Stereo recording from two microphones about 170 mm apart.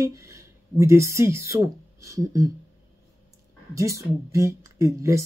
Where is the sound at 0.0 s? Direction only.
15° right (ahead or behind).